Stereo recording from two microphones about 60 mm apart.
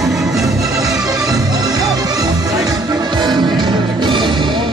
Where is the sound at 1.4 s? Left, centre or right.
Right.